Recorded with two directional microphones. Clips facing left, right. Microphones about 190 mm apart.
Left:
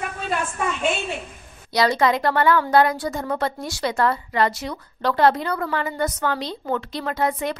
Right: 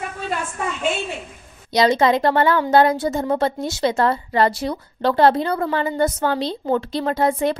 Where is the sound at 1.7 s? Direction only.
20° right (ahead or behind).